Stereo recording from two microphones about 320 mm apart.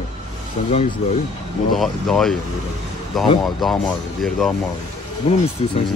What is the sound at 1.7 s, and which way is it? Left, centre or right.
Speech, centre.